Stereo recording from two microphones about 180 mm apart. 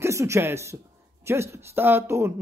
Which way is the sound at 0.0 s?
15° right (ahead or behind).